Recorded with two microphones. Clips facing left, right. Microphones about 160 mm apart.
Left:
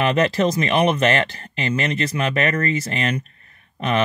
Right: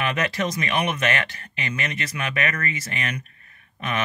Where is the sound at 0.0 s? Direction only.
30° left (ahead or behind).